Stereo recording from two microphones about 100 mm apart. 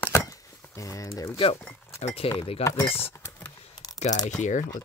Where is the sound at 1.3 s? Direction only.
65° left (ahead or behind).